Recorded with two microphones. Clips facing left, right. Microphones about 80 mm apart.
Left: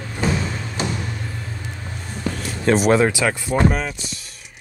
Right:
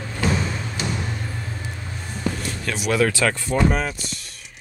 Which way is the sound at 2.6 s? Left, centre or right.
Left.